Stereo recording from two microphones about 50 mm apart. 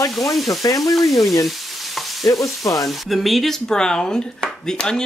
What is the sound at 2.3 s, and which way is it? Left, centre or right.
Stir, left.